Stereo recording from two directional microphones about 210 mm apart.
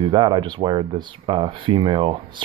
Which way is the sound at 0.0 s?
20° right (ahead or behind).